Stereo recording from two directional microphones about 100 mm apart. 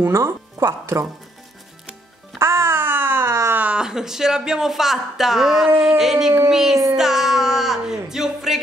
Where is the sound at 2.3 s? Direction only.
25° right (ahead or behind).